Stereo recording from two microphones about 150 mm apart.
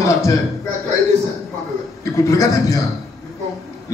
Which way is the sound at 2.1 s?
20° left (ahead or behind).